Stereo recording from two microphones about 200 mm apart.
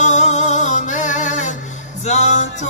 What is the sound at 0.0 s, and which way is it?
Music, 35° left (ahead or behind).